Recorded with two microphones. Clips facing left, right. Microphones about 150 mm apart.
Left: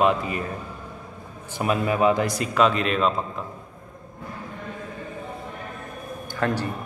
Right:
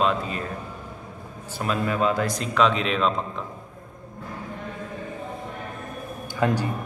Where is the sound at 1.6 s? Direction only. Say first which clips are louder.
Left 3 dB; 15° left (ahead or behind).